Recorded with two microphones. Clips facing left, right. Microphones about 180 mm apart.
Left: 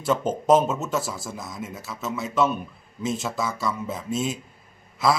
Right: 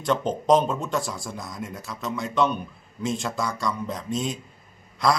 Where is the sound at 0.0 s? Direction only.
5° left (ahead or behind).